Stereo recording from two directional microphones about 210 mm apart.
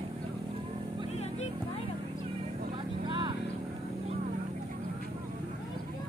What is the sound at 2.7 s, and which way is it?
Vehicle, 25° right (ahead or behind).